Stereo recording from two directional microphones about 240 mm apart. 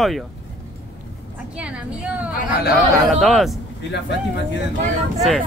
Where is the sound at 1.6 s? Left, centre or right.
Centre.